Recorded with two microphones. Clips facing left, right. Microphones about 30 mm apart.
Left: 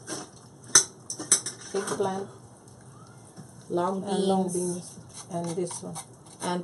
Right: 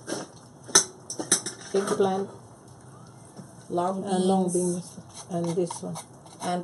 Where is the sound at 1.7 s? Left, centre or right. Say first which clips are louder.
Right 5 dB; right.